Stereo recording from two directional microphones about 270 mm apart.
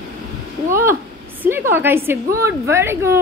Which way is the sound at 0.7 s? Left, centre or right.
Centre.